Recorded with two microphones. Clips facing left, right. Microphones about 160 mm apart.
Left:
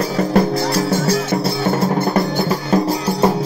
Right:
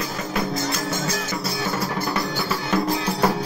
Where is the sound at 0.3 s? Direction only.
35° left (ahead or behind).